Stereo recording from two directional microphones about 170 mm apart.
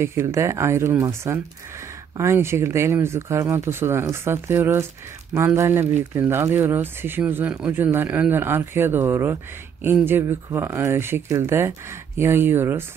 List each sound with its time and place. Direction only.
0.0 s speech: 15° right (ahead or behind)